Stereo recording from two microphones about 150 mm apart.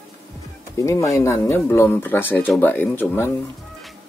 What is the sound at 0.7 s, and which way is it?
Speech, 20° left (ahead or behind).